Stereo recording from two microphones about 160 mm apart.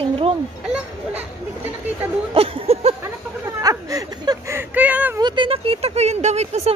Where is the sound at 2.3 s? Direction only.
35° right (ahead or behind).